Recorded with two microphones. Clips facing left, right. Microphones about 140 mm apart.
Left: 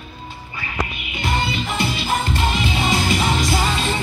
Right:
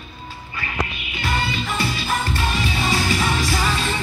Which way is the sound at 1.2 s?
20° left (ahead or behind).